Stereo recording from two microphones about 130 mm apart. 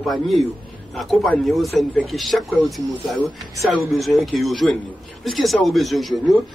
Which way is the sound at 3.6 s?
Centre (ahead or behind).